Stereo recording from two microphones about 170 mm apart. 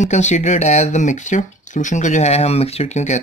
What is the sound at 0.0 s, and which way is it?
Speech, 45° left (ahead or behind).